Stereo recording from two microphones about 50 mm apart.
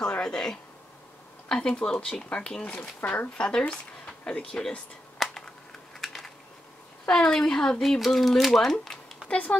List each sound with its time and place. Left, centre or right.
0.2 s a woman's voice: centre
2.7 s a woman's voice: left; by 4.7 s centre
5.2 s a sound: centre
7.1 s a woman's voice: centre
9.3 s speech: left